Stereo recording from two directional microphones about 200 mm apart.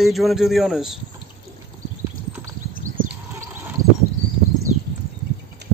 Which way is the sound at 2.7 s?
40° right (ahead or behind).